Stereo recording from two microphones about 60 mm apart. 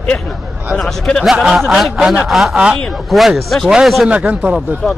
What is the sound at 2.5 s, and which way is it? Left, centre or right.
Speech, centre.